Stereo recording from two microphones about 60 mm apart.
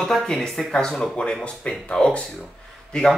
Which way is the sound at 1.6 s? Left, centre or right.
Left.